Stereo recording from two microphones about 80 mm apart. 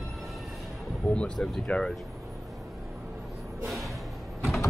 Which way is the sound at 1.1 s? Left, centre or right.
Centre.